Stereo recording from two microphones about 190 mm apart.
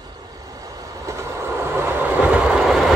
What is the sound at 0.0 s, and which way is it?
Vehicle, 20° right (ahead or behind).